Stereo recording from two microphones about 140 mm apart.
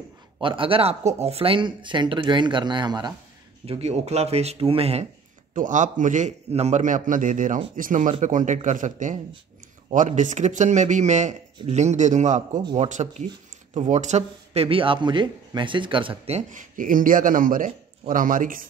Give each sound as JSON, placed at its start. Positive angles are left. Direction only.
{"t": 0.4, "sound": "speech", "side_deg": -40}
{"t": 3.6, "sound": "speech", "side_deg": -45}
{"t": 5.5, "sound": "a man's voice", "side_deg": -65}
{"t": 16.4, "sound": "a man's voice", "side_deg": -70}